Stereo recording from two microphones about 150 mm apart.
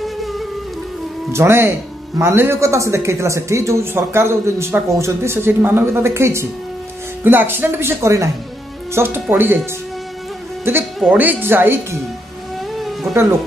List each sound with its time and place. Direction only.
0.0 s music: centre (ahead or behind)
1.3 s speech: 15° right (ahead or behind)
11.0 s speech: 10° right (ahead or behind)
12.7 s music: centre (ahead or behind)